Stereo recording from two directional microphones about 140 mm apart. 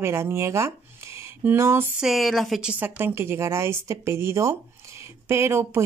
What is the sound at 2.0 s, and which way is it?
Speech, centre (ahead or behind).